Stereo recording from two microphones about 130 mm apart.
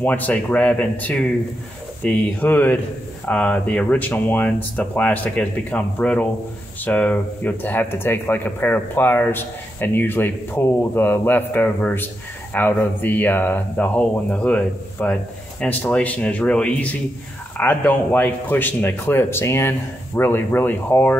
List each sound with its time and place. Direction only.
0.0 s speech: 10° left (ahead or behind)